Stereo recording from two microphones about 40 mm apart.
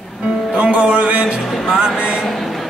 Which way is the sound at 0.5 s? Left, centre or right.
Centre.